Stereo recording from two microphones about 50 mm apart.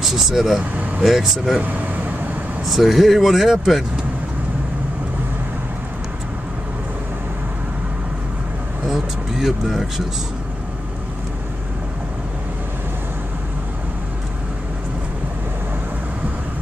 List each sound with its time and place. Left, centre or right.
0.0 s speech: centre
1.6 s vehicle: right
2.6 s speech: centre
8.8 s speech: centre